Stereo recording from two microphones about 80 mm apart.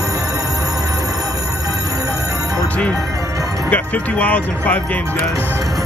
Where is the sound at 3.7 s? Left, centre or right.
Centre.